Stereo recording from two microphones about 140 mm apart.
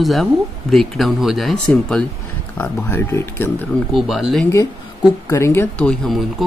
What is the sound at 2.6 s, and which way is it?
Speech, 15° left (ahead or behind).